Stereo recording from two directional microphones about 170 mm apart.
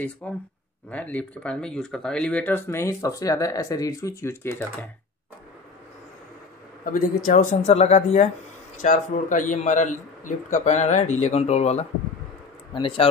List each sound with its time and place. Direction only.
0.2 s speech: 5° left (ahead or behind)
6.8 s a man's voice: 55° left (ahead or behind); by 13.1 s 30° left (ahead or behind)